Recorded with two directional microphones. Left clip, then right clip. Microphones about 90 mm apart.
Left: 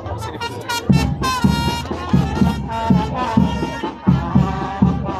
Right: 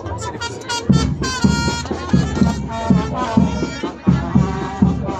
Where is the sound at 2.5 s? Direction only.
15° left (ahead or behind).